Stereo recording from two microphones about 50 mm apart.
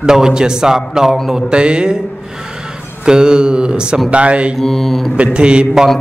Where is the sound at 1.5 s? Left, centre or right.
Centre.